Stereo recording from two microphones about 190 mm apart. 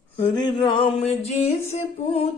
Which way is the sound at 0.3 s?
25° left (ahead or behind).